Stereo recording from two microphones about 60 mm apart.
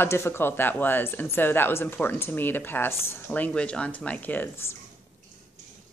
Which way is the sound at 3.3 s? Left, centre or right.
Centre.